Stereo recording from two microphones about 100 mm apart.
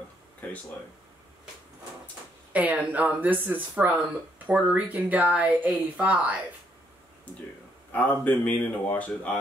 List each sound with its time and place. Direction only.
2.5 s speech: 15° right (ahead or behind)
7.9 s speech: 15° left (ahead or behind)